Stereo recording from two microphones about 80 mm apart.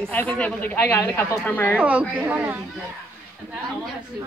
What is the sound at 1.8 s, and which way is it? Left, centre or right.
Speech, centre.